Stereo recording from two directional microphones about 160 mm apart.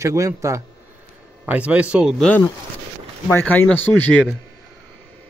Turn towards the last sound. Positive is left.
turn(degrees=10)  # may be behind; listen again after turning